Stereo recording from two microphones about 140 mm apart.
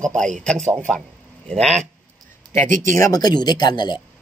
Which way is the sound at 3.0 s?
30° left (ahead or behind).